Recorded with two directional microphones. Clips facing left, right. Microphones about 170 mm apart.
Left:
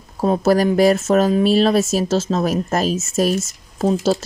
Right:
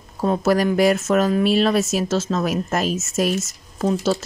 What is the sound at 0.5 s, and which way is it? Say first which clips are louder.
A woman's voice: left 3 dB; 35° left (ahead or behind).